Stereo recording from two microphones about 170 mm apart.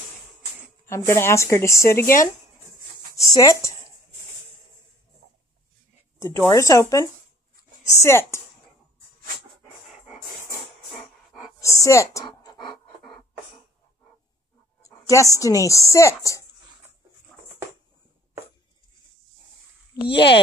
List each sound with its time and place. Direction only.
0.8 s speech: 15° left (ahead or behind)
3.2 s a sound: 20° left (ahead or behind)
6.1 s speech: 15° left (ahead or behind)
11.6 s a sound: 15° left (ahead or behind)
14.8 s a woman's voice: 20° left (ahead or behind)
20.0 s speech: 85° left